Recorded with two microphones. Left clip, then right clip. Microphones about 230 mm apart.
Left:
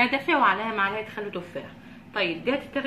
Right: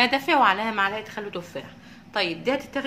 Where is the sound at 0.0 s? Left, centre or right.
Right.